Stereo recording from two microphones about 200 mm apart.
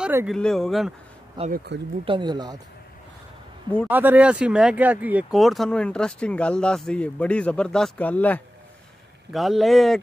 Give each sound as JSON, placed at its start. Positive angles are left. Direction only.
{"t": 0.0, "sound": "a sound", "side_deg": -10}
{"t": 0.3, "sound": "speech", "side_deg": 0}
{"t": 1.4, "sound": "speech", "side_deg": -25}
{"t": 3.9, "sound": "speech", "side_deg": -10}